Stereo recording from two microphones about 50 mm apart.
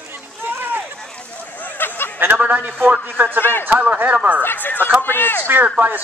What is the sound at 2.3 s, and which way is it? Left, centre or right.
Speech, right.